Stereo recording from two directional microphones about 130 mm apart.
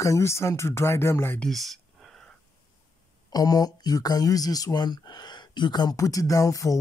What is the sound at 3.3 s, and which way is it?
Speech, 30° left (ahead or behind).